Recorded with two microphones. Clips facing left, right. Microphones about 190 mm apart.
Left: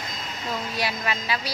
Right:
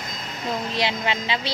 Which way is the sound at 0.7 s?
25° right (ahead or behind).